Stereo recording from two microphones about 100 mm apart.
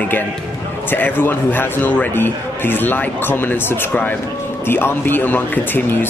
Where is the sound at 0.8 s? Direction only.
20° left (ahead or behind).